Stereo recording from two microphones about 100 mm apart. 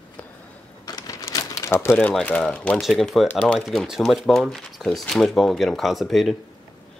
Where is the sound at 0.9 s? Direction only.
40° left (ahead or behind).